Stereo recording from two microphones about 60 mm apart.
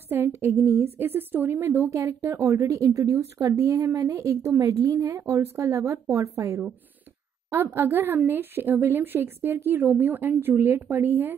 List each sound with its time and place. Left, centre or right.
0.1 s a sound: right
0.6 s a woman's voice: right
0.9 s a woman's voice: right
2.0 s a woman's voice: right
4.6 s a woman's voice: right
7.5 s a woman's voice: right